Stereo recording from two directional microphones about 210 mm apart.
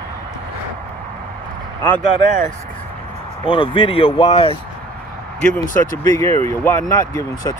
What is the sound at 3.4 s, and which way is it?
Speech, 25° left (ahead or behind).